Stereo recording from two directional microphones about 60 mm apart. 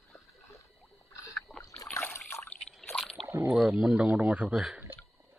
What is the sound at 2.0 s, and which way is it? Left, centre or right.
Water, left.